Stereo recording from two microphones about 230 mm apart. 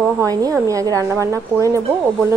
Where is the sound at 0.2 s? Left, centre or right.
Centre.